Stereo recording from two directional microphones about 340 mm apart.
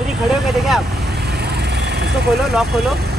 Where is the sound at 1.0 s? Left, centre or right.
Right.